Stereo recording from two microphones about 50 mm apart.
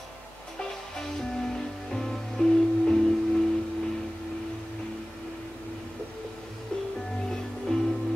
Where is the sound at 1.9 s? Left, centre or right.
Centre.